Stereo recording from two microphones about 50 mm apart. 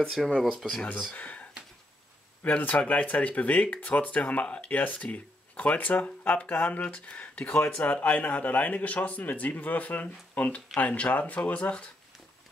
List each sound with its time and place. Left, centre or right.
0.0 s speech: centre
1.1 s speech: left
2.4 s speech: left